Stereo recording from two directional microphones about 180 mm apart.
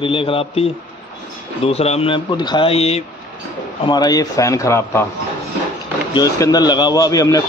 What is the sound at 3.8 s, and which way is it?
A man's voice, 25° left (ahead or behind).